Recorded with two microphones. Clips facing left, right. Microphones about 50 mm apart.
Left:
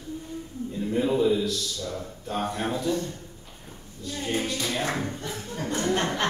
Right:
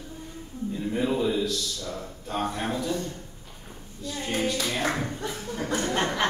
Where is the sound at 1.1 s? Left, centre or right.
Centre.